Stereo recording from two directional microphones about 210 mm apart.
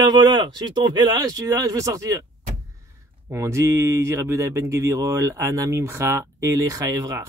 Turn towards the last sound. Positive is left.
turn(degrees=-15)  # may be behind; listen again after turning